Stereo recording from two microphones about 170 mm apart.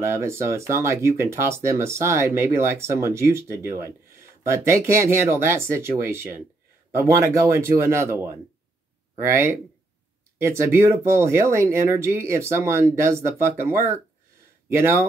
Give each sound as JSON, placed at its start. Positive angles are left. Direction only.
{"t": 0.0, "sound": "speech", "side_deg": -15}